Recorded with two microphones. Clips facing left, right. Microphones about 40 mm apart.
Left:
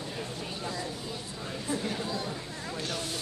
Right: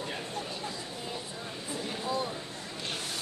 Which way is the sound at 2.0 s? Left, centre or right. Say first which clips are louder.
Right 2 dB; right.